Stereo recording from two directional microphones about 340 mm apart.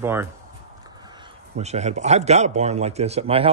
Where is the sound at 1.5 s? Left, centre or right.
Centre.